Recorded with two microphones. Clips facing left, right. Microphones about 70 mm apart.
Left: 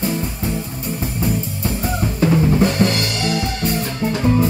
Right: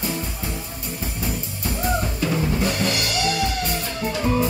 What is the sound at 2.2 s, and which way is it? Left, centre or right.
Drum kit, left.